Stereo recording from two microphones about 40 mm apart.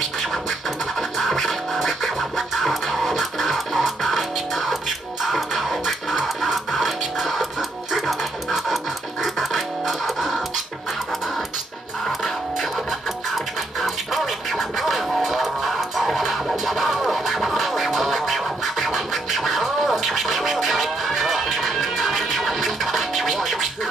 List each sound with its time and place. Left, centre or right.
0.3 s music: centre
13.7 s music: centre